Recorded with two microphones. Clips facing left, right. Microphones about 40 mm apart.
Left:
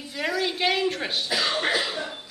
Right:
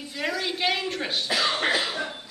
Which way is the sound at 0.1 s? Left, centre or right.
Centre.